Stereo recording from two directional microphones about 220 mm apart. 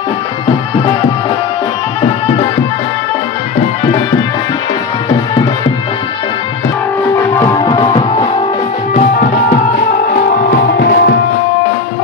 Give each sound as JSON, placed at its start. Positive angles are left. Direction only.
{"t": 7.3, "sound": "music", "side_deg": 15}
{"t": 10.3, "sound": "music", "side_deg": 45}